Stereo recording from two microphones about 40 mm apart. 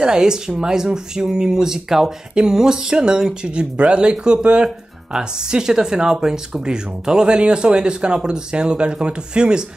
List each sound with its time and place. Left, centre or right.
0.0 s speech: centre